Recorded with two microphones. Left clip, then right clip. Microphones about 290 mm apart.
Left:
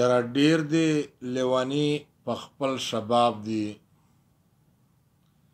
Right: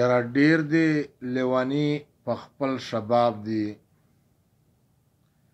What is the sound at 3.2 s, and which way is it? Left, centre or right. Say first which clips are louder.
Speech: right 1 dB; left.